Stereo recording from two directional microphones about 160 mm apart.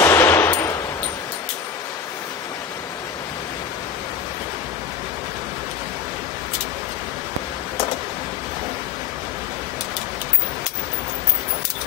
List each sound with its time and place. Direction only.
0.0 s machine gun: 15° left (ahead or behind)